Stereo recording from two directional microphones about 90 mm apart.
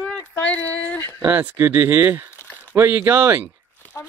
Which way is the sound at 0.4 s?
20° left (ahead or behind).